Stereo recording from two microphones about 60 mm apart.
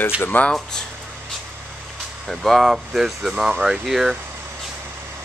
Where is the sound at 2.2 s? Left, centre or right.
Centre.